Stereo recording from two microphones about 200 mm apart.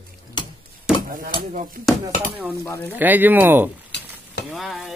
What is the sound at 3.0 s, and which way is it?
Speech, 10° right (ahead or behind).